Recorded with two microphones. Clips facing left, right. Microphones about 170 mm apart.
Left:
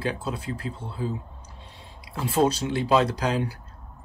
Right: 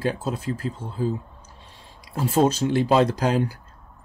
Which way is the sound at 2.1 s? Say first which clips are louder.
Right 3 dB; 45° right (ahead or behind).